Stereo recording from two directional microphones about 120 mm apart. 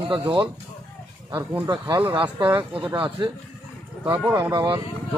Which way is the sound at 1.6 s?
35° right (ahead or behind).